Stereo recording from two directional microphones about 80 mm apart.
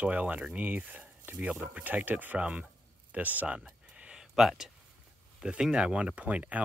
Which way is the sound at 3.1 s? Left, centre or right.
Centre.